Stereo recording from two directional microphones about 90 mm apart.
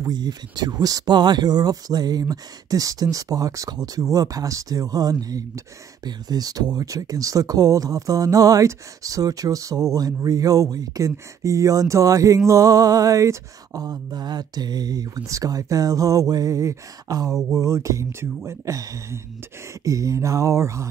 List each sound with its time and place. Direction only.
0.0 s speech: 50° right (ahead or behind)